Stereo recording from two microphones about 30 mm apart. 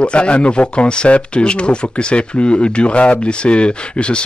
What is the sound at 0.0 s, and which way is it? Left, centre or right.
Speech, left.